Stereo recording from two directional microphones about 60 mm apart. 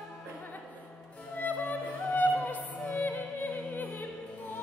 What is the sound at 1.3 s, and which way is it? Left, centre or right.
Music, left.